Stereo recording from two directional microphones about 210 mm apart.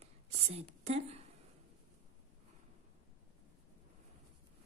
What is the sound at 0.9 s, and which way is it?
Speech, 30° right (ahead or behind).